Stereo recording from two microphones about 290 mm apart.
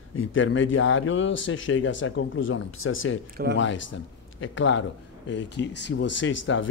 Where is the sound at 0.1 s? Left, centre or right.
Left.